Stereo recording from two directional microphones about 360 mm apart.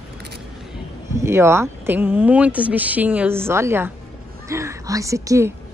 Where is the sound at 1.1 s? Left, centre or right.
Centre.